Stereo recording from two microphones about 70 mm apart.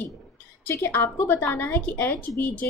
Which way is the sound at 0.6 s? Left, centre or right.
Left.